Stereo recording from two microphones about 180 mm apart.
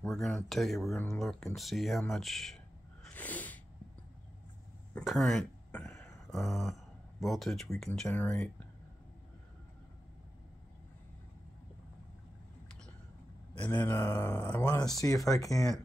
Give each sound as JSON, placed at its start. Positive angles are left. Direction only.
{"t": 0.0, "sound": "speech", "side_deg": 5}
{"t": 4.9, "sound": "a sound", "side_deg": 0}
{"t": 7.8, "sound": "speech", "side_deg": 5}
{"t": 13.6, "sound": "speech", "side_deg": 10}